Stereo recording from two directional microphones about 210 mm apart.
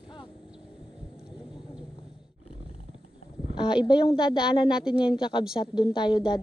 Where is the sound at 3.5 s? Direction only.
20° left (ahead or behind).